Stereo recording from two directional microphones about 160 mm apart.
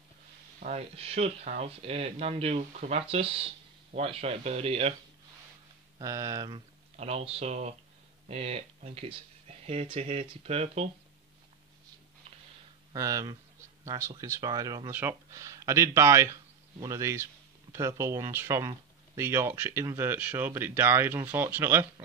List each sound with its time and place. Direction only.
0.6 s speech: 45° right (ahead or behind)
5.9 s speech: 20° right (ahead or behind)
7.0 s speech: 40° right (ahead or behind)
12.9 s speech: 20° right (ahead or behind)
14.9 s speech: 15° right (ahead or behind)